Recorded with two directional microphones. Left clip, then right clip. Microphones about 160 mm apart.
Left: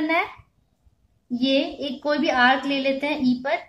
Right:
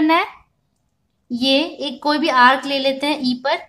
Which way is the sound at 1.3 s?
50° right (ahead or behind).